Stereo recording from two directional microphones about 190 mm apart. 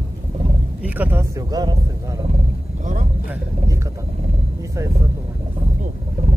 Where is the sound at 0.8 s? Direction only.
10° right (ahead or behind).